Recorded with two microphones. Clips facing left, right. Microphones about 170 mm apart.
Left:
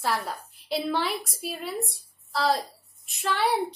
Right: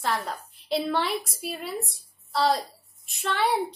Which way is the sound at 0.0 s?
5° left (ahead or behind).